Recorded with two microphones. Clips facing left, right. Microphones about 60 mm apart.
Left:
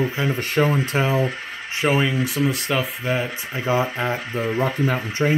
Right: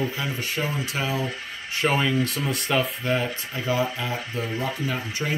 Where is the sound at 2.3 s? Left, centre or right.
Centre.